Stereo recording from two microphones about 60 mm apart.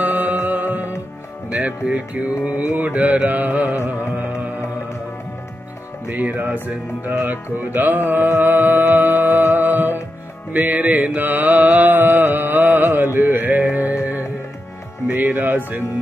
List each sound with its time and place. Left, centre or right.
0.0 s music: right
2.7 s mantra: right
6.0 s music: right
10.5 s mantra: right
11.1 s music: right
15.0 s speech: right